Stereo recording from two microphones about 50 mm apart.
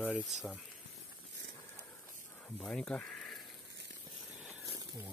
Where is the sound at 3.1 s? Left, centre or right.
Centre.